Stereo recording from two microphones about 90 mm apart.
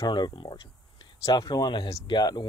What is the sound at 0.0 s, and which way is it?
Speech, 55° left (ahead or behind).